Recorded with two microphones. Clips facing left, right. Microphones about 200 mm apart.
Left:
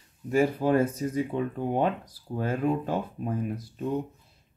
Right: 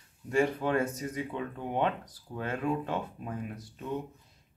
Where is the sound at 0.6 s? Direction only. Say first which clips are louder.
Left 6 dB; 30° left (ahead or behind).